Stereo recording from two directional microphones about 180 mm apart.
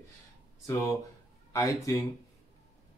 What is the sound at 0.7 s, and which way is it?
Speech, 15° left (ahead or behind).